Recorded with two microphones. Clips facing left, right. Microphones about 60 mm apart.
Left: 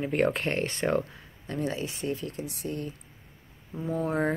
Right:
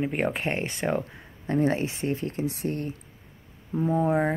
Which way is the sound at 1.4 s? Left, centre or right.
Right.